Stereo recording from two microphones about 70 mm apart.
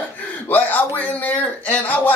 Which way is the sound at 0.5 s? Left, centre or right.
Left.